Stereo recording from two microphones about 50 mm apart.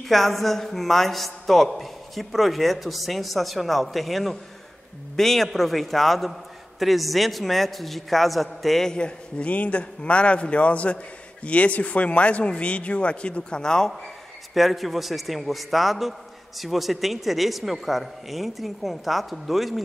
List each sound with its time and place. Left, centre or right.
0.0 s a man's voice: centre
8.8 s speech: centre
14.5 s a man's voice: centre